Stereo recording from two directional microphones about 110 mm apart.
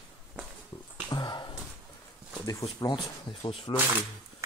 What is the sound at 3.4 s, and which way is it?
Speech, 50° left (ahead or behind).